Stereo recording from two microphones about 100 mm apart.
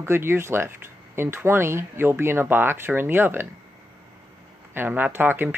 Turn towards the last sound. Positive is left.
turn(degrees=-20)  # may be behind; listen again after turning